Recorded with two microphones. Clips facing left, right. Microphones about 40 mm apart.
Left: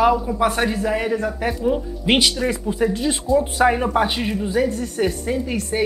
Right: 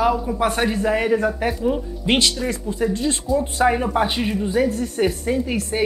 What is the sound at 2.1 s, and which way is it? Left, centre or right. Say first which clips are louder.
Speech: left 1 dB; centre.